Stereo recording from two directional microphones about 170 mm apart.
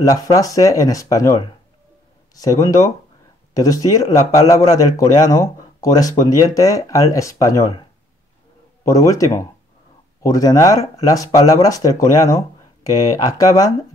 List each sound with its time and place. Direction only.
0.0 s speech: 20° left (ahead or behind)
8.8 s speech: 20° left (ahead or behind)